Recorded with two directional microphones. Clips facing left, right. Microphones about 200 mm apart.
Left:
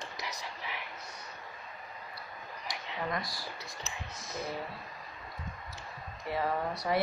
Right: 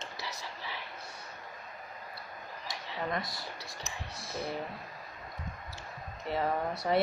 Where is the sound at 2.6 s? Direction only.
25° right (ahead or behind).